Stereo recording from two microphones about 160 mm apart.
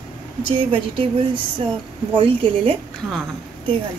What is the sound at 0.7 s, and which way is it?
A woman's voice, 35° right (ahead or behind).